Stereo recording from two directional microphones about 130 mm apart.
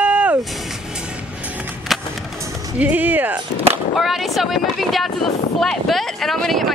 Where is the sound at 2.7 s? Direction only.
10° right (ahead or behind).